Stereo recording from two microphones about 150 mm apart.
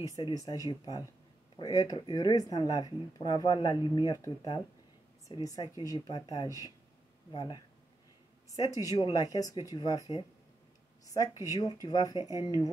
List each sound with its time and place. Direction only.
0.1 s speech: 25° left (ahead or behind)
8.8 s speech: 30° left (ahead or behind)
11.1 s speech: 20° right (ahead or behind)
11.5 s speech: 25° left (ahead or behind)
12.2 s speech: 20° right (ahead or behind)